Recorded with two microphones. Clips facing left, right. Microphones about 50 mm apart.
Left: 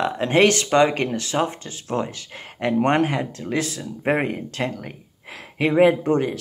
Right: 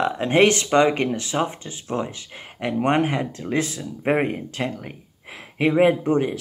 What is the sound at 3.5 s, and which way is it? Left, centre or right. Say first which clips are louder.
Speech: right 1 dB; right.